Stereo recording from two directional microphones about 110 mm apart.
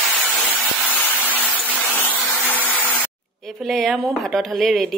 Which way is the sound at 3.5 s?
Centre (ahead or behind).